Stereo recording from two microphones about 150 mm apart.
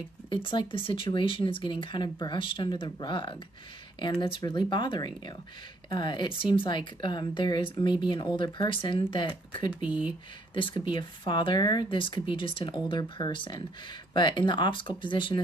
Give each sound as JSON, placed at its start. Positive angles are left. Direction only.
{"t": 0.3, "sound": "speech", "side_deg": 35}
{"t": 4.4, "sound": "speech", "side_deg": 30}
{"t": 9.8, "sound": "speech", "side_deg": -10}
{"t": 10.5, "sound": "speech", "side_deg": 35}